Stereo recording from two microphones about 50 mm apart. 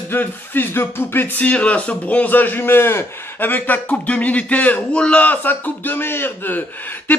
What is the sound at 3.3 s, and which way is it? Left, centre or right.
Speech, left.